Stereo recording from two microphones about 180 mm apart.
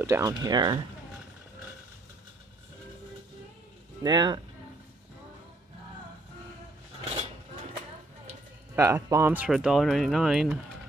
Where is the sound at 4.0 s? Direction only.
25° right (ahead or behind).